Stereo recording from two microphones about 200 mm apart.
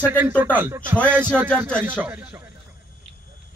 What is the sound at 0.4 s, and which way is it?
Speech, 10° right (ahead or behind).